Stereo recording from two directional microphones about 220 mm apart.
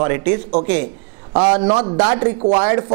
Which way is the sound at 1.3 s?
25° right (ahead or behind).